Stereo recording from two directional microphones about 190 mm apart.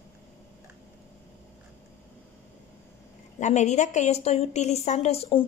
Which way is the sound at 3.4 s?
35° left (ahead or behind).